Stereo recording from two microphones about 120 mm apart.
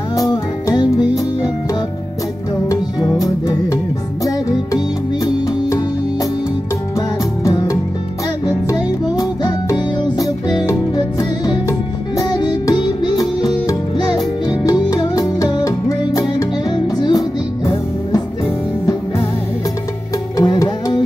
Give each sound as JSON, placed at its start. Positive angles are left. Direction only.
{"t": 0.1, "sound": "music", "side_deg": 30}
{"t": 2.7, "sound": "music", "side_deg": 30}
{"t": 7.0, "sound": "music", "side_deg": 30}
{"t": 9.1, "sound": "music", "side_deg": 30}
{"t": 20.3, "sound": "music", "side_deg": 30}